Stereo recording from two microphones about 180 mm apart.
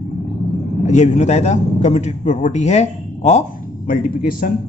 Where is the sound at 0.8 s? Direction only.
40° left (ahead or behind).